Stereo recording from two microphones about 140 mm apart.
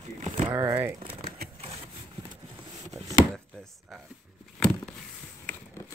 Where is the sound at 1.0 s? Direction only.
90° right.